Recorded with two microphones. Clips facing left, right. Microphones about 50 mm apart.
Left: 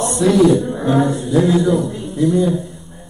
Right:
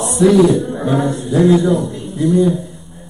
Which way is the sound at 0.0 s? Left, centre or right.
Centre.